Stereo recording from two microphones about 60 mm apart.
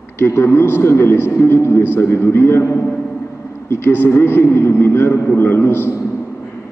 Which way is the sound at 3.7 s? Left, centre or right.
Left.